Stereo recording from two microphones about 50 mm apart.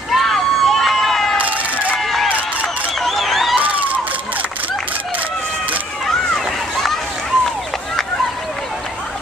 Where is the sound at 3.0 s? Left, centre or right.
Centre.